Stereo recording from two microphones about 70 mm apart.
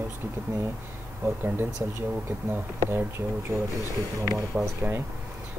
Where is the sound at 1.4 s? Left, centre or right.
Right.